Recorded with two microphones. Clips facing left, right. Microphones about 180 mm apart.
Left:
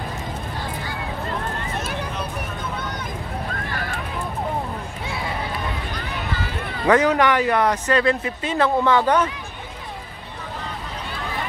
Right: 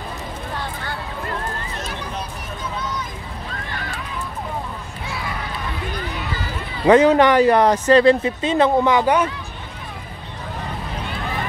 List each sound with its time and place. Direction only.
6.9 s speech: 25° right (ahead or behind); by 9.3 s 10° right (ahead or behind)